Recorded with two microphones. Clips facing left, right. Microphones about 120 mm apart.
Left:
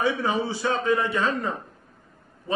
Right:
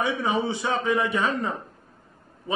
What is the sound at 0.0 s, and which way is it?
A man's voice, 20° right (ahead or behind).